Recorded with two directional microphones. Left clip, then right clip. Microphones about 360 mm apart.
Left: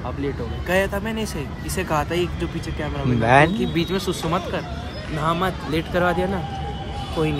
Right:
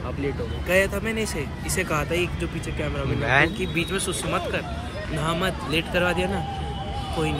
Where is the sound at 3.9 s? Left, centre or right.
Left.